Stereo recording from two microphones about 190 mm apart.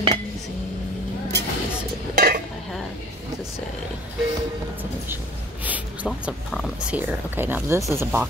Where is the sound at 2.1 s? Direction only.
50° right (ahead or behind).